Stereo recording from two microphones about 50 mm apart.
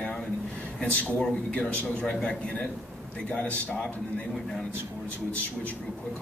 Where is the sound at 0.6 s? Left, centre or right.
Left.